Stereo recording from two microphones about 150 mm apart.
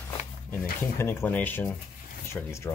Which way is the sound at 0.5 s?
15° left (ahead or behind).